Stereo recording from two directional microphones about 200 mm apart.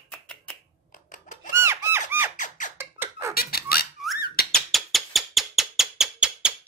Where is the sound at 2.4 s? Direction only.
40° left (ahead or behind).